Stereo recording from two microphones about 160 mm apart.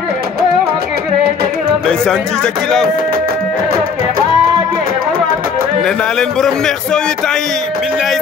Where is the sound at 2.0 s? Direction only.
5° left (ahead or behind).